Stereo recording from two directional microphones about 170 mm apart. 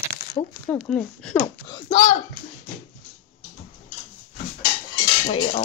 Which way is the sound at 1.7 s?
30° left (ahead or behind).